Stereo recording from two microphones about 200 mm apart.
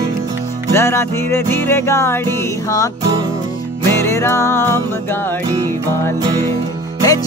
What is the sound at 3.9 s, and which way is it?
Music, 15° left (ahead or behind).